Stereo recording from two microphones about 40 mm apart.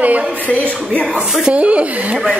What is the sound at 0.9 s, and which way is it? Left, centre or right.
Speech, left.